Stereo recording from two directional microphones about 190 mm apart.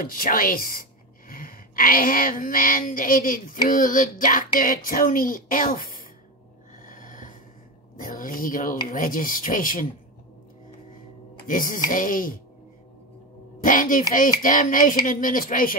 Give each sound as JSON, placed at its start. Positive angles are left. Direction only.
{"t": 0.0, "sound": "a woman's voice", "side_deg": 50}
{"t": 6.8, "sound": "a sound", "side_deg": 45}
{"t": 8.0, "sound": "a woman's voice", "side_deg": 45}
{"t": 11.4, "sound": "a woman's voice", "side_deg": 45}
{"t": 13.7, "sound": "a woman's voice", "side_deg": 45}